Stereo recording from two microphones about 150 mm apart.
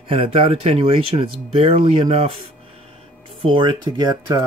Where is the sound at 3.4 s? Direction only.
30° right (ahead or behind).